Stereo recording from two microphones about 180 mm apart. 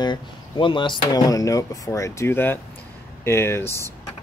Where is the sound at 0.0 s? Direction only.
25° left (ahead or behind).